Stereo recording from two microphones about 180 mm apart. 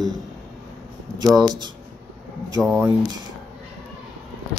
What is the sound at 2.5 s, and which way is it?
Speech, 15° right (ahead or behind).